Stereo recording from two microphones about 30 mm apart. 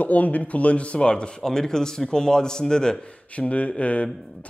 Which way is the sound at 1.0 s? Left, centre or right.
Left.